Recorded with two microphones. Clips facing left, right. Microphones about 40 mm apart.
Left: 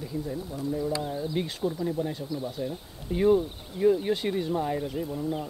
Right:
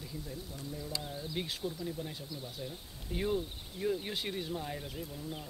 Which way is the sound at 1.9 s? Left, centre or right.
Centre.